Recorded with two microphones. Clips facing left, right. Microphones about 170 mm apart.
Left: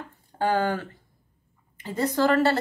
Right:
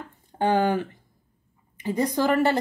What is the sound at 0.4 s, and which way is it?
A woman's voice, 20° right (ahead or behind).